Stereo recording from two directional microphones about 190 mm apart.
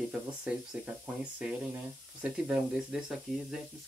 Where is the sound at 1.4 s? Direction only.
5° right (ahead or behind).